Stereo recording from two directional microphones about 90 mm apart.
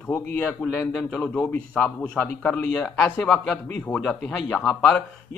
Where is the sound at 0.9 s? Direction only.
10° left (ahead or behind).